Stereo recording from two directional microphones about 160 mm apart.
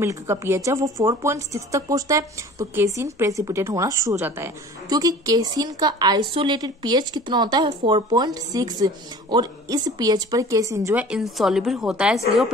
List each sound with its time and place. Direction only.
0.0 s a woman's voice: 15° right (ahead or behind)
11.0 s a woman's voice: 5° right (ahead or behind)